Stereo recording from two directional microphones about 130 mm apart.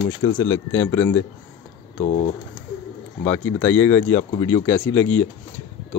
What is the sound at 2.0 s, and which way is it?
Speech, 60° left (ahead or behind).